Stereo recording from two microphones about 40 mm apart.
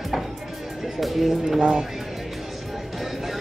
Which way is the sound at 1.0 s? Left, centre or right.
Centre.